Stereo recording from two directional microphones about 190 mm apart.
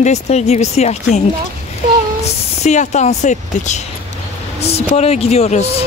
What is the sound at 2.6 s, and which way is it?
Speech, 35° left (ahead or behind).